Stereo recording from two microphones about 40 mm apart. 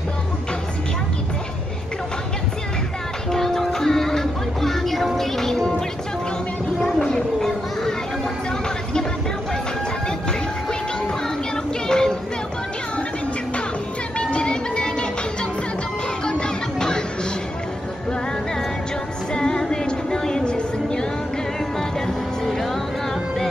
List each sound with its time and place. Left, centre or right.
3.3 s music: centre
6.8 s a sound: centre
11.5 s child singing: centre
14.1 s music: left
16.3 s music: left
19.3 s music: centre
20.5 s a sound: left
21.7 s music: centre